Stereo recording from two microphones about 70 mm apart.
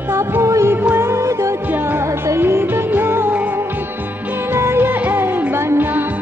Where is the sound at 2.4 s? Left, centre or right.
Right.